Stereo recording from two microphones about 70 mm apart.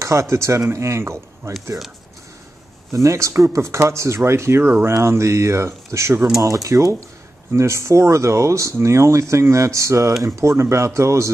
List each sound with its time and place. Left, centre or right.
0.0 s speech: right
2.9 s speech: right
6.4 s speech: right